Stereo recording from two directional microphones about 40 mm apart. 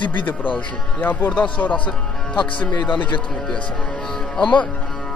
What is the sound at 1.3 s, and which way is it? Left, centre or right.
Speech, left.